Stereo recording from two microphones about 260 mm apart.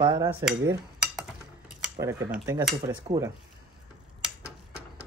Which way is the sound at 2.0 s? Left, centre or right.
Centre.